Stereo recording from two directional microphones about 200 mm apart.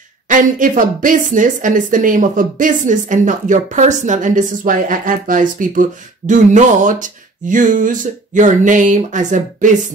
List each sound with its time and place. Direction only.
0.3 s a woman's voice: 40° right (ahead or behind)